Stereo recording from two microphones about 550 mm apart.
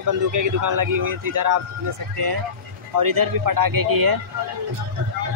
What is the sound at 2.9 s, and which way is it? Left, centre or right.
Speech, right.